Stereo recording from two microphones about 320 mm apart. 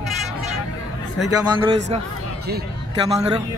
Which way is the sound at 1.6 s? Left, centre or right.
Centre.